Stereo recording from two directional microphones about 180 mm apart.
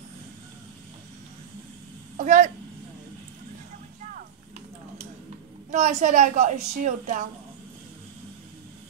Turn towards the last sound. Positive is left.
turn(degrees=-45)  # may be behind; listen again after turning